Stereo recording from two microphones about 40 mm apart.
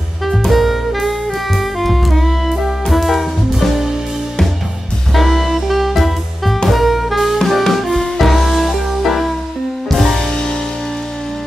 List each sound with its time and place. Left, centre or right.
0.5 s saxophone: centre
5.1 s music: centre
10.3 s music: centre